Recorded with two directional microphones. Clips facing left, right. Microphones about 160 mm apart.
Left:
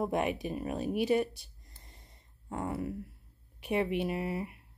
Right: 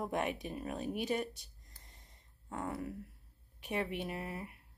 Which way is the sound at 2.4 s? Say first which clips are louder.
Left 5 dB; 20° left (ahead or behind).